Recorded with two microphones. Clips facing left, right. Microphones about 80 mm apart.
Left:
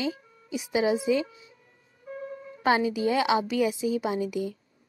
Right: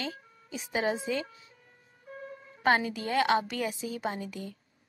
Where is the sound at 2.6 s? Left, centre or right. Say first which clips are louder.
Left 3 dB; centre.